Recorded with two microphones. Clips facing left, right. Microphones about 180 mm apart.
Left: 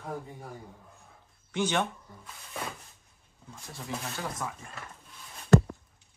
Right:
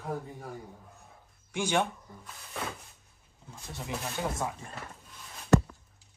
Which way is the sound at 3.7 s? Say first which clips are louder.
Right 1 dB; 20° right (ahead or behind).